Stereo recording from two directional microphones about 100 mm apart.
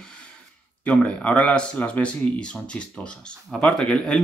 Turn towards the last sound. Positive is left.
turn(degrees=5)  # may be behind; listen again after turning